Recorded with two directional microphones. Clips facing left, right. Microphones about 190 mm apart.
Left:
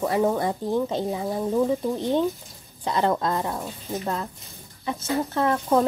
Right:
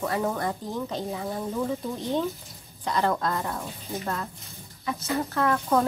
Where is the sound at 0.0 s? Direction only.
20° left (ahead or behind).